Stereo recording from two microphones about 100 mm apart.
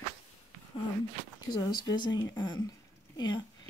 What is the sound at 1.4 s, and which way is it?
Speech, 45° left (ahead or behind).